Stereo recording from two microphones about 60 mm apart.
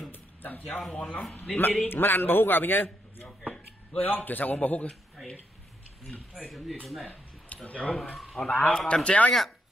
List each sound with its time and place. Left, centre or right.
0.1 s music: left
0.9 s a man's voice: left
6.5 s speech: centre
7.1 s a sound: left
8.2 s a man's voice: centre
8.5 s a man's voice: left